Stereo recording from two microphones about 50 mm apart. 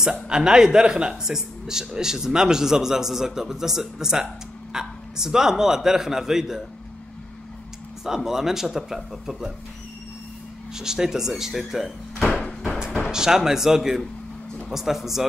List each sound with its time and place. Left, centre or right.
0.1 s a man's voice: centre
8.0 s a man's voice: centre
10.7 s a man's voice: centre
12.3 s a sound: centre
13.1 s a man's voice: centre